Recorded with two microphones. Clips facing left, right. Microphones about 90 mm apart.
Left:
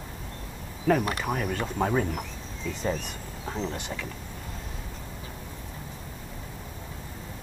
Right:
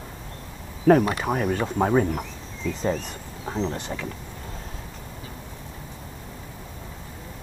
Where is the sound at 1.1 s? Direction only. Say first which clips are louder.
Right 5 dB; 20° right (ahead or behind).